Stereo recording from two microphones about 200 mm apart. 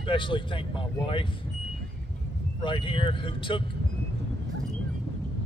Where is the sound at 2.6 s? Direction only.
25° left (ahead or behind).